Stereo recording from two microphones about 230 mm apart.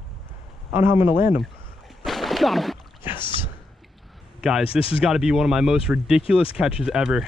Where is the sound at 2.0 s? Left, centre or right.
Centre.